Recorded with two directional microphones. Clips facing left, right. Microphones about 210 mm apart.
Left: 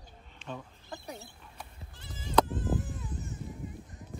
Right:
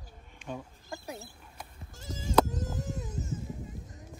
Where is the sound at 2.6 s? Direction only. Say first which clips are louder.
Left 3 dB; 40° right (ahead or behind).